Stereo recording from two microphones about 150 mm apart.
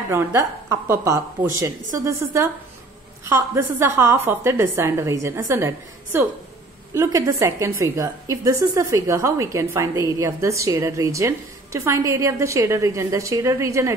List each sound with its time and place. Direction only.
0.1 s a woman's voice: 15° right (ahead or behind)